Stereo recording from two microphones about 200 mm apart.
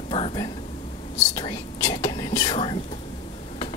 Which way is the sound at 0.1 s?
25° left (ahead or behind).